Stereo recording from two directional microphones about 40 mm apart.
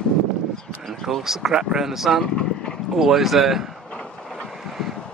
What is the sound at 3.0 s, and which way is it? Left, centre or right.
Speech, centre.